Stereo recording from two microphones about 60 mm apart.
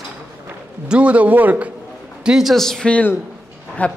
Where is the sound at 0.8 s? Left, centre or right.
Right.